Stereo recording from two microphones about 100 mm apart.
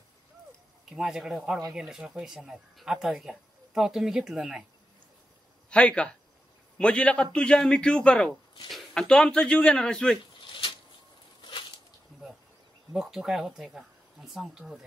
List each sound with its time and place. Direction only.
0.8 s speech: 5° right (ahead or behind)
5.7 s a man's voice: 10° left (ahead or behind)
10.4 s a sound: 55° left (ahead or behind)
12.9 s speech: 5° right (ahead or behind)